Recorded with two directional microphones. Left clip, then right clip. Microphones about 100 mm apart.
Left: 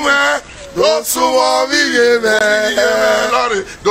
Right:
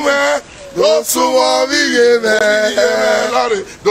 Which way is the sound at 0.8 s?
30° right (ahead or behind).